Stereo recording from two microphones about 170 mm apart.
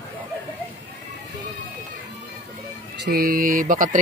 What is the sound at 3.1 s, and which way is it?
Speech, 60° right (ahead or behind).